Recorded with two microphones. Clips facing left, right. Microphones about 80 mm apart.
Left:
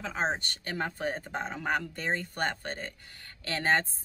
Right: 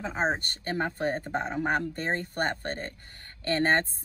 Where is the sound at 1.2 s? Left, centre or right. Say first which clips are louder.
Right 5 dB; centre.